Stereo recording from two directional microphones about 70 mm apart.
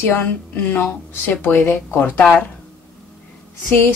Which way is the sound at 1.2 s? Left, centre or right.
Left.